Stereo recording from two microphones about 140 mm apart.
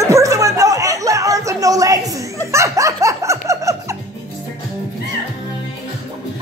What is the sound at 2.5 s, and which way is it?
Music, 20° right (ahead or behind).